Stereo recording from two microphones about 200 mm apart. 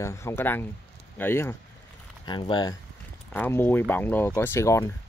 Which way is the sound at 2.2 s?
20° left (ahead or behind).